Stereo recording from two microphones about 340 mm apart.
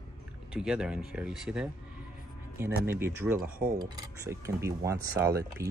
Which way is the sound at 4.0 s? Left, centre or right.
Centre.